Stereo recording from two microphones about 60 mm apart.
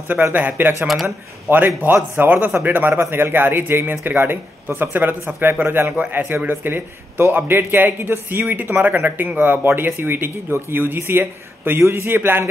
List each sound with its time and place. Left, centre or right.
0.3 s a man's voice: right